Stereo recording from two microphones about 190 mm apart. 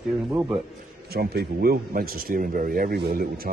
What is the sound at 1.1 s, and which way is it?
Speech, 55° right (ahead or behind).